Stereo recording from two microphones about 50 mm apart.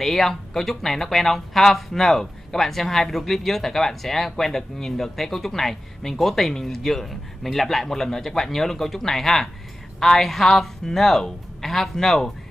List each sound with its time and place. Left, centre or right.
0.0 s a woman's voice: centre